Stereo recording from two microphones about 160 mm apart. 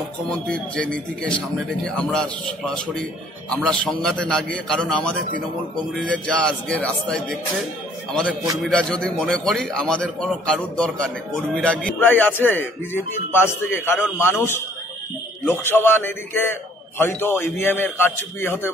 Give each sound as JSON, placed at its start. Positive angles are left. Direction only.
{"t": 0.3, "sound": "a man's voice", "side_deg": 5}